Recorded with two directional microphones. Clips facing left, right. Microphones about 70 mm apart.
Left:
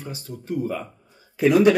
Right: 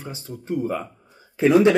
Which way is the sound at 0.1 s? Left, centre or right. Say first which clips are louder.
Right 2 dB; right.